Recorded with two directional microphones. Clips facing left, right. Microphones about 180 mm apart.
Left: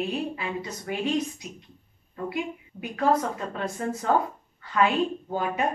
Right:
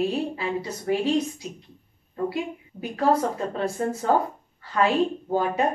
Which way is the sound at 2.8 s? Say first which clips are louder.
Right 2 dB; 30° right (ahead or behind).